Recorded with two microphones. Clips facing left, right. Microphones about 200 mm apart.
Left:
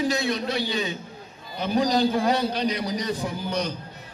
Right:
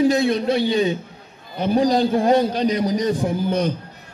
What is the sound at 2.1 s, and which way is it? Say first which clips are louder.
A man's voice: right 6 dB; 45° right (ahead or behind).